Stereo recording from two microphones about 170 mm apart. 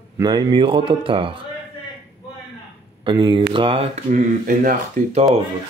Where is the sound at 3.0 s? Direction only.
30° right (ahead or behind).